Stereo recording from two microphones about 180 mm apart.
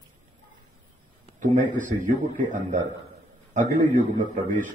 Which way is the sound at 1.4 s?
45° right (ahead or behind).